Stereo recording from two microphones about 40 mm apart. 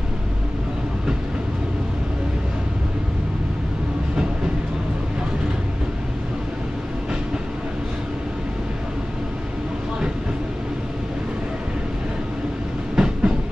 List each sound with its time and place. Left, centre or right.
12.9 s train: right